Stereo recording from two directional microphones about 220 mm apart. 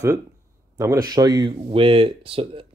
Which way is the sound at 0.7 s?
15° right (ahead or behind).